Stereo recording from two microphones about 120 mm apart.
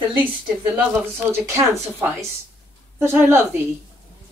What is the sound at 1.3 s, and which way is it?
Speech, 20° right (ahead or behind).